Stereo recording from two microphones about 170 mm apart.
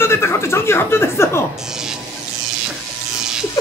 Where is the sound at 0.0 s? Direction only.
15° left (ahead or behind).